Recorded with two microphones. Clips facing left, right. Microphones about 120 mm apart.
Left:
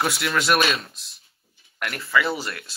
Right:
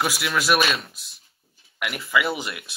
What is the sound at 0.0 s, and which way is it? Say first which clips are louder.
Speech: left 1 dB; centre (ahead or behind).